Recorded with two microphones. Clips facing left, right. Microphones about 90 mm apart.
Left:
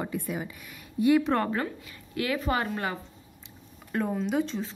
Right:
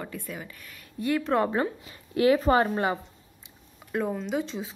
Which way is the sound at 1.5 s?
25° right (ahead or behind).